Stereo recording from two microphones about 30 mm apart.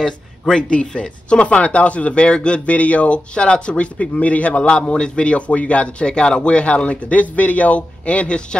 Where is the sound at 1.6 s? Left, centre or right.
Left.